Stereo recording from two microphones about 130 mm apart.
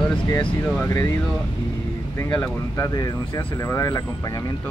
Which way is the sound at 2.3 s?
20° left (ahead or behind).